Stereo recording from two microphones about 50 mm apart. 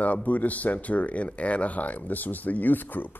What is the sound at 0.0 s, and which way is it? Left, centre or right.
Speech, left.